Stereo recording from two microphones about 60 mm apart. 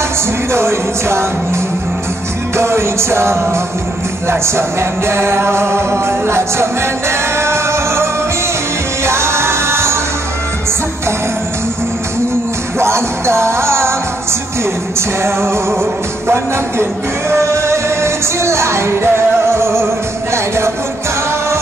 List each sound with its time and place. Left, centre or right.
0.5 s music: right
12.7 s music: right
15.0 s music: right